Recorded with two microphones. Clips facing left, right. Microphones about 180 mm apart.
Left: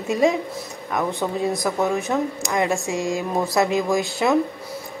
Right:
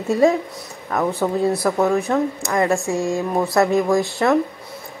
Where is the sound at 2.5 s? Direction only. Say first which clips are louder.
Right 3 dB; 15° left (ahead or behind).